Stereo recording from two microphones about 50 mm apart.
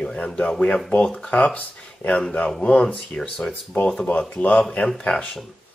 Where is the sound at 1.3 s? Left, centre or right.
Left.